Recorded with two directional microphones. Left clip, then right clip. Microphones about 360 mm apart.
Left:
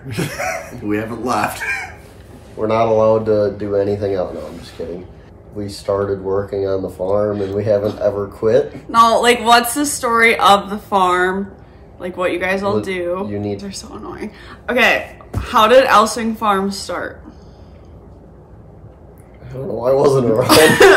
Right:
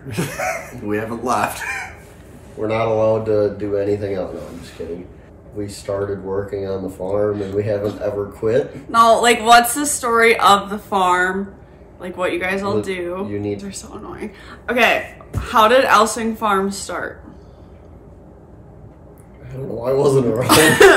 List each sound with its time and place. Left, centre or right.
0.1 s speech: centre
2.6 s speech: centre
5.6 s speech: centre
8.9 s a woman's voice: centre
19.5 s speech: centre
20.4 s a woman's voice: centre